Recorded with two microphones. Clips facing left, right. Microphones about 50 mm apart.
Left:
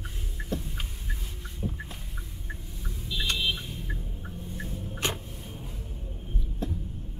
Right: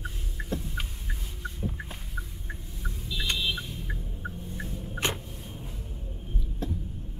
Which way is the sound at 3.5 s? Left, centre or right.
Centre.